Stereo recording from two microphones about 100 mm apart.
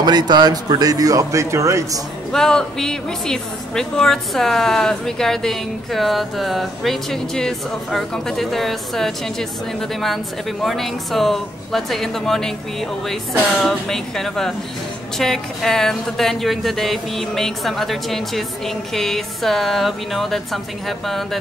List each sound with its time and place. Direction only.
0.0 s speech: 45° right (ahead or behind)
2.3 s a woman's voice: 5° left (ahead or behind)
13.6 s a woman's voice: 5° left (ahead or behind)